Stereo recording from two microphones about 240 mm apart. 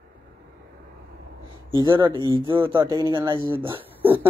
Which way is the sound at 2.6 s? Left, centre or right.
Centre.